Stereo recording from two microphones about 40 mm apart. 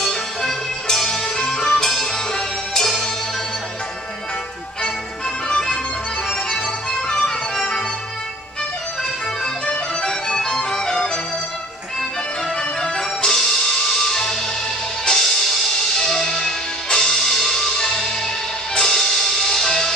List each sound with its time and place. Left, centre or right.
0.0 s music: centre
1.7 s music: centre
7.1 s music: left
9.7 s music: centre
12.8 s music: centre